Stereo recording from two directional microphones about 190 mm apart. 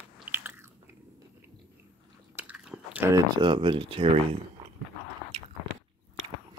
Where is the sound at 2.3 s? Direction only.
5° right (ahead or behind); by 4.2 s 30° right (ahead or behind).